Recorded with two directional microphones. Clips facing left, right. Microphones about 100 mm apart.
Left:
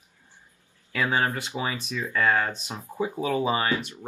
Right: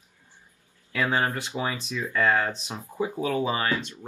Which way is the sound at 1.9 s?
15° left (ahead or behind).